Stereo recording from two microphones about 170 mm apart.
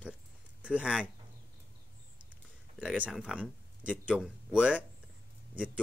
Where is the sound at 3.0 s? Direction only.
5° right (ahead or behind).